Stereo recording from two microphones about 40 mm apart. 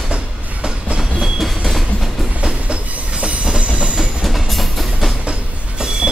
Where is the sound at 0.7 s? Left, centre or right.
Right.